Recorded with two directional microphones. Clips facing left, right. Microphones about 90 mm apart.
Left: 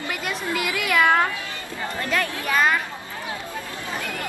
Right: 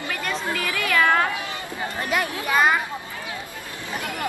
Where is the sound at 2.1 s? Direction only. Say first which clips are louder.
Right 1 dB; 15° right (ahead or behind).